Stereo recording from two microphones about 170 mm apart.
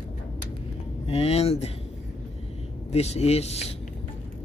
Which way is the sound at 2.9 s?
40° left (ahead or behind).